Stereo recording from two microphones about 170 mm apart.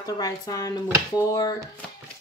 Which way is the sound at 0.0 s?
20° left (ahead or behind).